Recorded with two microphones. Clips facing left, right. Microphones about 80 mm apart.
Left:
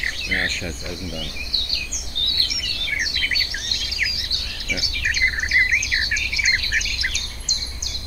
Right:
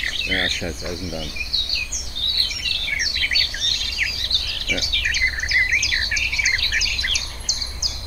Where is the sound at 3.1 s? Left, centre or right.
Centre.